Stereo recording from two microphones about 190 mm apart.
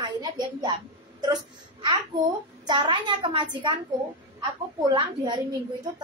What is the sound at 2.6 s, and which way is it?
A woman's voice, 25° right (ahead or behind).